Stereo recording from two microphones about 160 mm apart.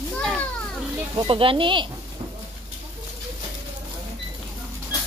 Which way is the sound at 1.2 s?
35° right (ahead or behind).